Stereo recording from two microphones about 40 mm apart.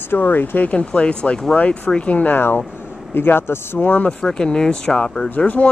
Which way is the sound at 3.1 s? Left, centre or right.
Left.